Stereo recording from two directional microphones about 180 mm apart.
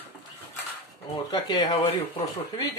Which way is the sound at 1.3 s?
25° left (ahead or behind).